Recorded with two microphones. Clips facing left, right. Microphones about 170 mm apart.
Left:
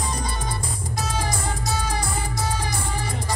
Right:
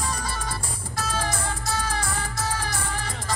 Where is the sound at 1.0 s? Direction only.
15° left (ahead or behind).